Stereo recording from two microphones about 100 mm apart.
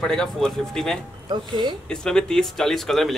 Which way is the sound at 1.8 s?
5° left (ahead or behind).